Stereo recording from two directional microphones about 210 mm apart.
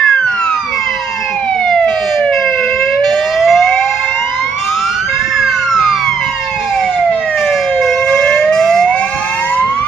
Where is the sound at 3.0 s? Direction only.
Centre (ahead or behind).